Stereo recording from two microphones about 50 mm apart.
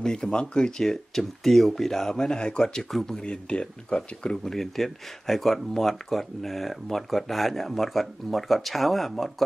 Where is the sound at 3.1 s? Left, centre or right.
Centre.